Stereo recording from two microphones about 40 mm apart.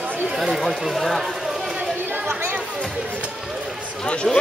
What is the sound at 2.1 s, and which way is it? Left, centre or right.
Chatter, right.